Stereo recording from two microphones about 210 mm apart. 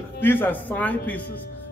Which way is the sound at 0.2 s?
10° left (ahead or behind).